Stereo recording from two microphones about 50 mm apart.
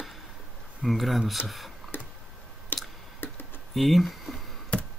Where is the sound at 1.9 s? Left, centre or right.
Left.